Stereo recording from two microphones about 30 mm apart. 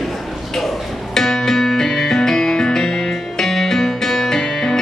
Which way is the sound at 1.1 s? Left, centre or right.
Centre.